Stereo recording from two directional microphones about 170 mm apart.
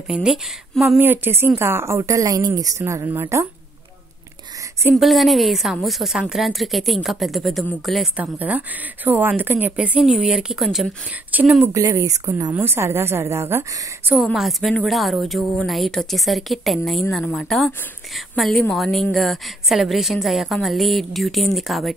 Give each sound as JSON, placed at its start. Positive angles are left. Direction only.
{"t": 0.1, "sound": "a woman's voice", "side_deg": -5}
{"t": 5.0, "sound": "a woman's voice", "side_deg": 0}
{"t": 11.7, "sound": "a woman's voice", "side_deg": -20}
{"t": 14.2, "sound": "a woman's voice", "side_deg": 0}